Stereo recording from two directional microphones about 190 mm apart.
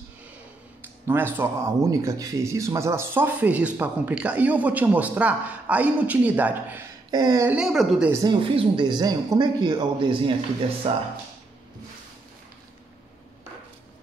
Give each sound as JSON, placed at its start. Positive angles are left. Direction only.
{"t": 1.0, "sound": "speech", "side_deg": -10}
{"t": 7.1, "sound": "a sound", "side_deg": -20}
{"t": 7.4, "sound": "speech", "side_deg": -5}
{"t": 8.1, "sound": "speech", "side_deg": -20}